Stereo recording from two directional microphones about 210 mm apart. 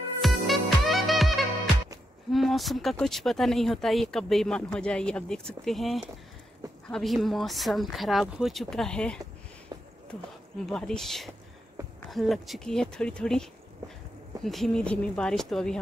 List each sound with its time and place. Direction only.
0.2 s music: centre (ahead or behind)
2.3 s speech: centre (ahead or behind)
9.7 s a sound: 20° right (ahead or behind)
10.7 s speech: 5° left (ahead or behind)